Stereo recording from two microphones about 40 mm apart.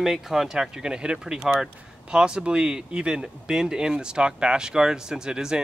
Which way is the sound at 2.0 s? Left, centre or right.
Right.